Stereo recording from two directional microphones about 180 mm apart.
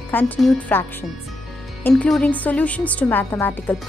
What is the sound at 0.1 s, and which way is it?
Speech, 5° left (ahead or behind).